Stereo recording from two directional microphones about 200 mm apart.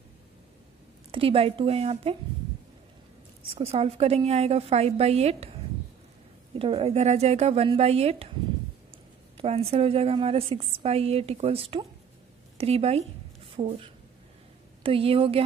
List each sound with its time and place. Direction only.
1.1 s a woman's voice: 25° right (ahead or behind)
3.4 s a woman's voice: 30° right (ahead or behind)
6.6 s a woman's voice: 30° right (ahead or behind)
9.4 s a woman's voice: 30° right (ahead or behind)